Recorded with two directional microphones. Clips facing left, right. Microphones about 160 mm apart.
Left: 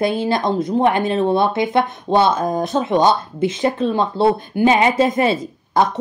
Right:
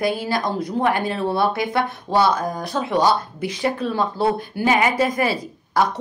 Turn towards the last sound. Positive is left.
turn(degrees=25)  # may be behind; listen again after turning